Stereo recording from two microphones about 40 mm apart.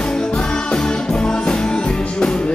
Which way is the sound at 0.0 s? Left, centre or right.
Centre.